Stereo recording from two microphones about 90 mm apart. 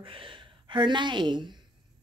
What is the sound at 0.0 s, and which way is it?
A woman's voice, 70° right (ahead or behind).